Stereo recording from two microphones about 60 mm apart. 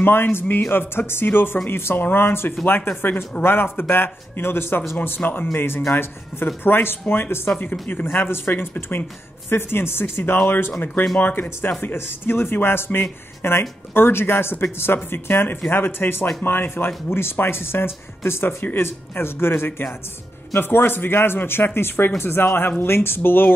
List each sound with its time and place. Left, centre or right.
0.0 s speech: left